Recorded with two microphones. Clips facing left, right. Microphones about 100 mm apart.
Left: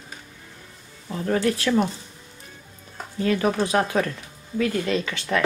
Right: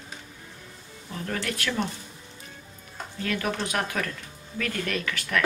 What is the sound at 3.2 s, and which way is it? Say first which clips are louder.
Speech: left 7 dB; 30° left (ahead or behind).